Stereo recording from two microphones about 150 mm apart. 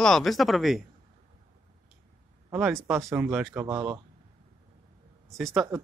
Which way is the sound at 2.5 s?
5° right (ahead or behind).